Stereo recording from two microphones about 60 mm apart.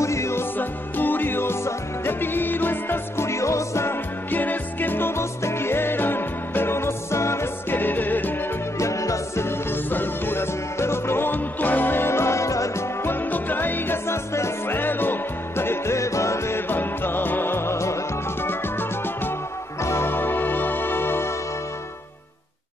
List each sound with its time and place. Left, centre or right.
0.0 s music: left
0.6 s music: left
3.3 s music: left
4.3 s music: left
7.7 s music: left
8.7 s music: left
9.7 s music: left
13.0 s music: left
14.8 s music: left
18.4 s music: left